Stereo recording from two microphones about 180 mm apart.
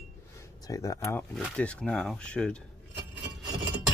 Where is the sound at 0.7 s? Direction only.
15° left (ahead or behind).